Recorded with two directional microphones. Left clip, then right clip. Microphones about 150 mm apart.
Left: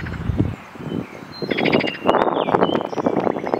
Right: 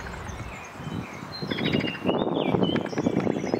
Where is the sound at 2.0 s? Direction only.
25° left (ahead or behind).